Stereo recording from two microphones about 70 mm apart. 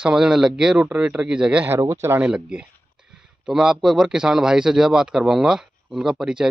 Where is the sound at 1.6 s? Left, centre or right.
Right.